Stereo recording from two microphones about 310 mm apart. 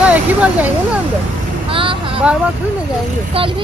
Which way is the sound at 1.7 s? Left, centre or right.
Centre.